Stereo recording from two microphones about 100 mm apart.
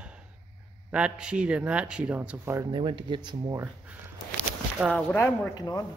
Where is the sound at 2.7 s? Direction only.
55° right (ahead or behind).